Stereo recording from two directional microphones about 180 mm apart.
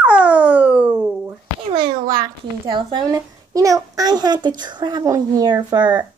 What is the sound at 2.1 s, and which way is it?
A child's voice, 25° right (ahead or behind).